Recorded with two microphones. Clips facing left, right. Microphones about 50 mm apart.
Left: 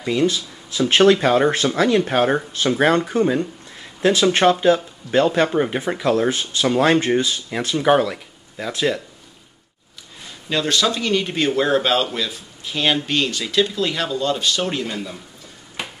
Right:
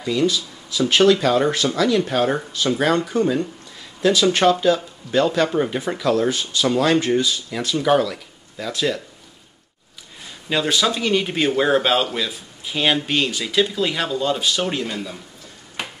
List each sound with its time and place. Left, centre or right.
0.3 s speech: left
10.5 s speech: centre